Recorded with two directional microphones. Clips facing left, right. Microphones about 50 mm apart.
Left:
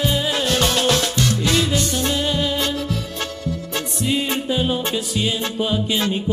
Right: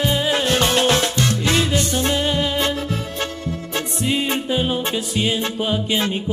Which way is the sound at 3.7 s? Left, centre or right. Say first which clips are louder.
Right 1 dB; right.